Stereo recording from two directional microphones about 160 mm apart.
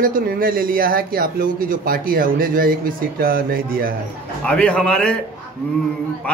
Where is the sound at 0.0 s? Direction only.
65° right (ahead or behind).